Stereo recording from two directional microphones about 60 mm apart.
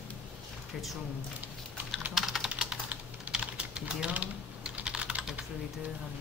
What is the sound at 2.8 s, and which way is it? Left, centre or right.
Typing, centre.